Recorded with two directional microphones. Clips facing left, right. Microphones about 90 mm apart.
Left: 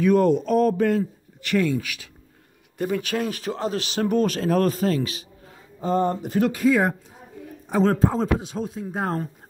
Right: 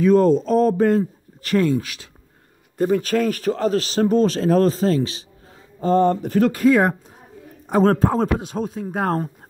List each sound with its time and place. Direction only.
0.0 s speech: 30° right (ahead or behind)
5.8 s speech: 65° right (ahead or behind)
6.2 s a man's voice: 50° right (ahead or behind)